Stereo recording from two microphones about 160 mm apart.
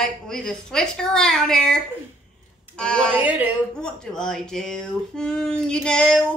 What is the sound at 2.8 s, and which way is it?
Speech, 5° left (ahead or behind).